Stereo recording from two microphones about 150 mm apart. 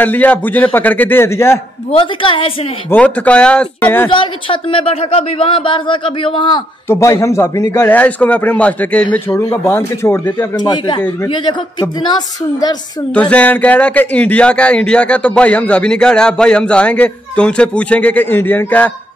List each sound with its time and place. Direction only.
0.0 s speech: 10° left (ahead or behind)
1.9 s speech: 35° left (ahead or behind)
2.9 s speech: 10° left (ahead or behind)
4.1 s speech: 35° left (ahead or behind)
6.9 s speech: 20° left (ahead or behind)
10.3 s a woman's voice: 30° left (ahead or behind)
13.1 s speech: 10° left (ahead or behind)